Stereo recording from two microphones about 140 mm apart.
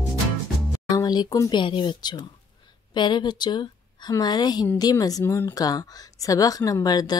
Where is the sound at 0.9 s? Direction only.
30° left (ahead or behind).